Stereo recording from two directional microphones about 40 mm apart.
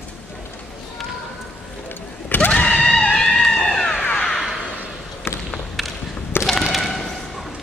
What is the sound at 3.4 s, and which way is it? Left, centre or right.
Cat, centre.